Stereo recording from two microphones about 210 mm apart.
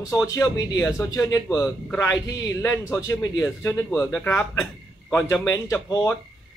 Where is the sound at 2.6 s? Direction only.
10° left (ahead or behind).